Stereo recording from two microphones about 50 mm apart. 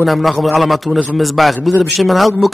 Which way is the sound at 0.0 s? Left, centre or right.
Centre.